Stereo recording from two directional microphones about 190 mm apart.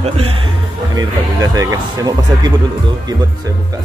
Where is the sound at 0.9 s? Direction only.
20° right (ahead or behind).